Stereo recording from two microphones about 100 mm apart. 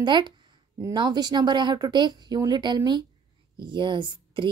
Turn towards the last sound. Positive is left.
turn(degrees=-55)  # may be behind; listen again after turning